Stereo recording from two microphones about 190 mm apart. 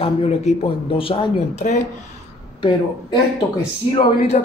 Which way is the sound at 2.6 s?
25° left (ahead or behind).